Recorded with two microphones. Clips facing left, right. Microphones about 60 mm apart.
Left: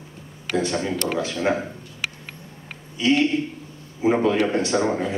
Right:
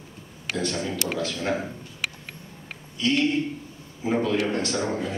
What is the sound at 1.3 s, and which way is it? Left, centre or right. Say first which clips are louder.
Speech: left 5 dB; left.